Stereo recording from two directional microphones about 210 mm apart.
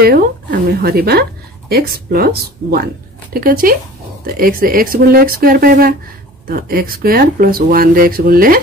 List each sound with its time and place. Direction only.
0.0 s speech: 45° right (ahead or behind)